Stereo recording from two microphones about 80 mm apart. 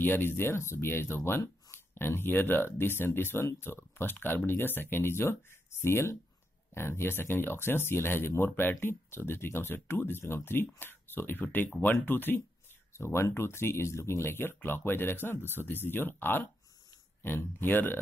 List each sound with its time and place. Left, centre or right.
0.0 s speech: left